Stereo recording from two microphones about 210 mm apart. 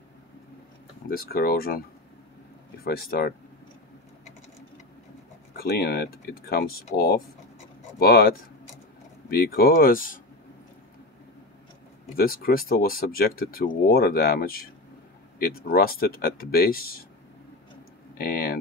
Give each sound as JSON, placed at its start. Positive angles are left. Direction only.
{"t": 1.0, "sound": "speech", "side_deg": 45}
{"t": 5.6, "sound": "speech", "side_deg": 45}
{"t": 12.2, "sound": "speech", "side_deg": 45}
{"t": 18.1, "sound": "speech", "side_deg": 45}